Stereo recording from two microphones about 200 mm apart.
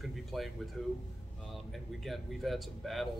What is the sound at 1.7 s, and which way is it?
Speech, centre (ahead or behind).